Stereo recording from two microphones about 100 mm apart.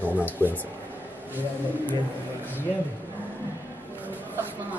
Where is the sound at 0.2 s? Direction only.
20° right (ahead or behind).